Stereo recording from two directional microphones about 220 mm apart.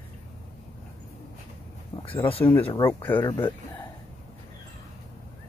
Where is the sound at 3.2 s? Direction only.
20° left (ahead or behind).